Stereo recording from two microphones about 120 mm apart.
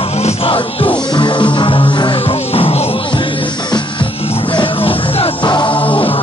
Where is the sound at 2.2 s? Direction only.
55° left (ahead or behind).